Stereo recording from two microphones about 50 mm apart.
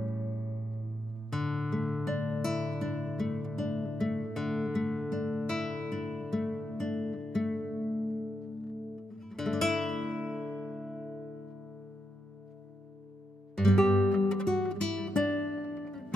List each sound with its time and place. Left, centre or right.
0.0 s music: centre
8.9 s music: centre
10.1 s music: centre
13.6 s music: centre